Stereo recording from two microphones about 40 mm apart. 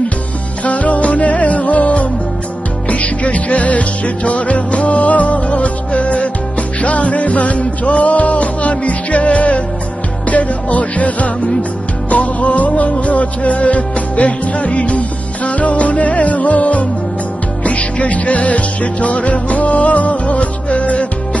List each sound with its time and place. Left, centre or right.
0.7 s music: left